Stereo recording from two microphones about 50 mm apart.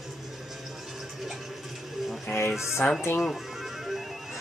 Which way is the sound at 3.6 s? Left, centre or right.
Centre.